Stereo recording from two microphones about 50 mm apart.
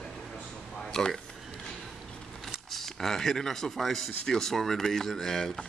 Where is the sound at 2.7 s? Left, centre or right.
Centre.